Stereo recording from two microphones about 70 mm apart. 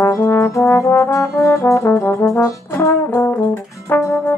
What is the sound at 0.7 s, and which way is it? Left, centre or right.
Trombone, left.